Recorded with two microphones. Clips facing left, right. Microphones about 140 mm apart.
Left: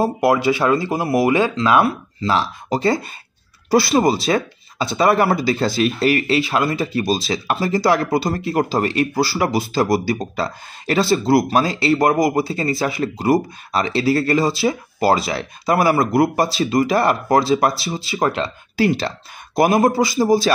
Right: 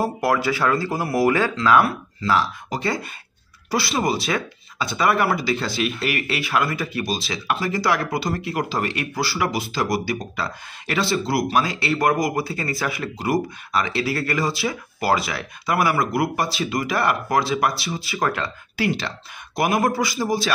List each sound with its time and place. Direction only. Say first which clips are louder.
0.0 s speech: left 5 dB; 20° left (ahead or behind)
18.8 s speech: left 6 dB; 35° left (ahead or behind)